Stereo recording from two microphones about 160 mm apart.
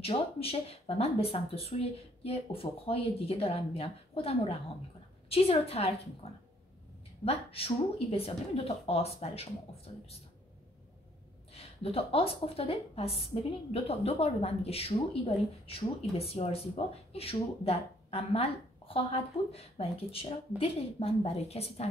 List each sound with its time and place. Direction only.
0.0 s speech: 35° left (ahead or behind)
11.5 s speech: 40° left (ahead or behind)